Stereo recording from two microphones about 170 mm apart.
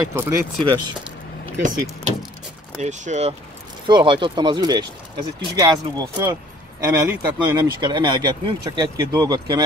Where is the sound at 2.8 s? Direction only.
45° right (ahead or behind).